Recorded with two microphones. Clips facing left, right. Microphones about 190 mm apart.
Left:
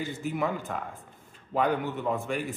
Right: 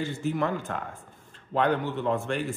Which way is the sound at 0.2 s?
5° left (ahead or behind).